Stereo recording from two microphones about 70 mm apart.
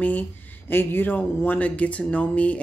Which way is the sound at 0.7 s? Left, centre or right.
Left.